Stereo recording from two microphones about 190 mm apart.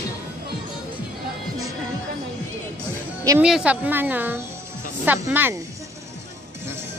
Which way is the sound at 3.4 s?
5° right (ahead or behind).